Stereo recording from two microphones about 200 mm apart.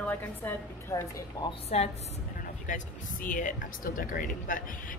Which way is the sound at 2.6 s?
40° left (ahead or behind).